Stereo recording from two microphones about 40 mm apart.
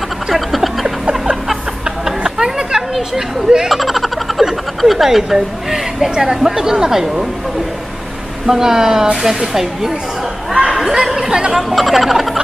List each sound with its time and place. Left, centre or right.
0.3 s a sound: centre
1.3 s music: centre
2.9 s a sound: centre
4.8 s speech: centre
8.5 s speech: centre
11.5 s speech: centre